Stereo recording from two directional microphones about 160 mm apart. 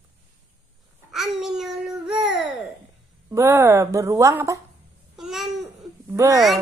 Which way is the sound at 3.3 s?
15° right (ahead or behind).